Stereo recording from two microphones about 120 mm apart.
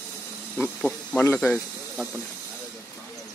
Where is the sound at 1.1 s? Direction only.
15° left (ahead or behind).